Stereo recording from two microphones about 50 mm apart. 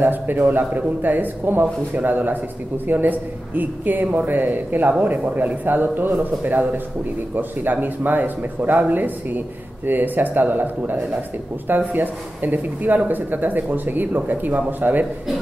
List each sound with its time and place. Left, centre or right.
0.0 s speech: right